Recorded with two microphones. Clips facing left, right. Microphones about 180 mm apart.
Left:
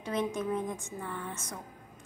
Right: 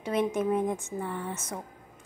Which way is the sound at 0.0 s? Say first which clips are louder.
Right 4 dB; 20° right (ahead or behind).